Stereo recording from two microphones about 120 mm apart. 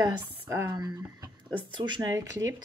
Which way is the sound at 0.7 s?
35° right (ahead or behind).